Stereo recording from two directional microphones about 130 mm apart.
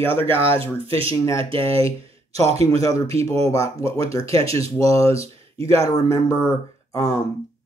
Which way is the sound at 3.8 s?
50° right (ahead or behind).